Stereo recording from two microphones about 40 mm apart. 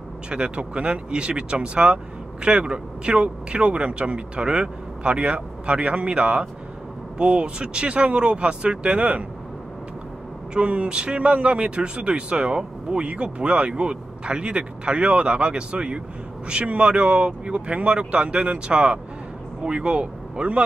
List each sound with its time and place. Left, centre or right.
0.3 s a man's voice: right
10.5 s a man's voice: right